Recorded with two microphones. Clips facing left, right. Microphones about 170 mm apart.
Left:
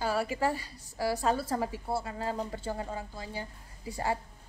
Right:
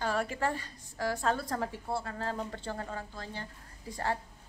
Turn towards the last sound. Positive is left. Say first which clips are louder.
# left 2 dB
turn(degrees=10)  # may be behind; listen again after turning